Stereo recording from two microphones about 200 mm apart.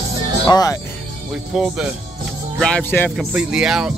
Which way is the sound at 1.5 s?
5° right (ahead or behind).